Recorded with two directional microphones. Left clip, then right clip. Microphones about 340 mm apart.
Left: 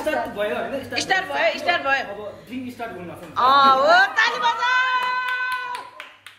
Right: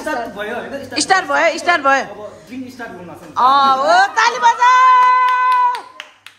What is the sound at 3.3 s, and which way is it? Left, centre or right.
Speech, centre.